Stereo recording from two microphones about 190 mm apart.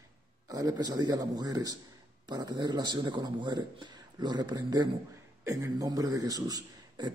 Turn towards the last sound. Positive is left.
turn(degrees=-20)  # may be behind; listen again after turning